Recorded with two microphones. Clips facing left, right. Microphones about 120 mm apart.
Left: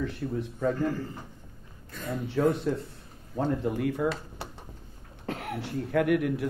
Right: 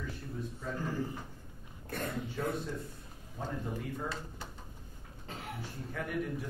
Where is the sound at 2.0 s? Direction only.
65° left (ahead or behind).